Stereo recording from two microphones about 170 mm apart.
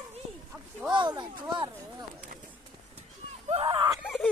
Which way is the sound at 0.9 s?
25° right (ahead or behind).